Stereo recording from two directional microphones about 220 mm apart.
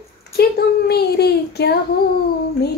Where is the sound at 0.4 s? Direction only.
45° left (ahead or behind).